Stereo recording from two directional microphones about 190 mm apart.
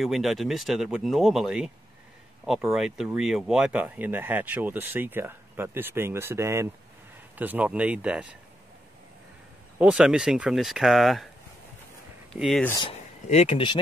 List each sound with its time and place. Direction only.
0.0 s speech: centre (ahead or behind)
9.8 s speech: 5° right (ahead or behind)
12.4 s speech: centre (ahead or behind)
12.7 s speech: 30° left (ahead or behind)